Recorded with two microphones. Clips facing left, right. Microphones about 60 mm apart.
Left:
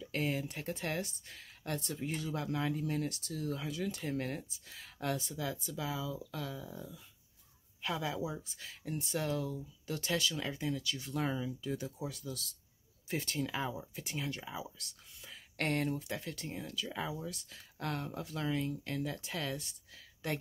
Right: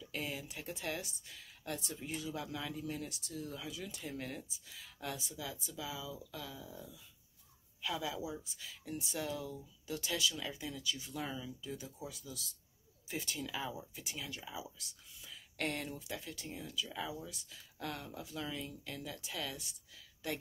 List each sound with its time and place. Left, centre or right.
0.0 s speech: left
10.8 s speech: left
13.4 s speech: left
13.7 s speech: left
16.8 s speech: left